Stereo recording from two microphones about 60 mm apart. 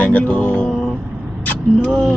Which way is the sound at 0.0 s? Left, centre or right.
Left.